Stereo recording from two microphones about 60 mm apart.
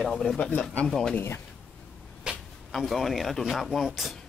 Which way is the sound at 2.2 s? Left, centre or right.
Centre.